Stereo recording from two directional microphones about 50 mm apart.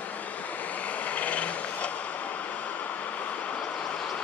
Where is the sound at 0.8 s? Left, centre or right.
Left.